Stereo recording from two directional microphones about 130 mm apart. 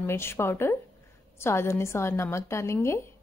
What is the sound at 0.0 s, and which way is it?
A woman's voice, 20° left (ahead or behind).